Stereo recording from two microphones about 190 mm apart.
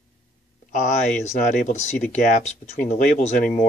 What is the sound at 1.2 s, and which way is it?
Speech, 35° left (ahead or behind).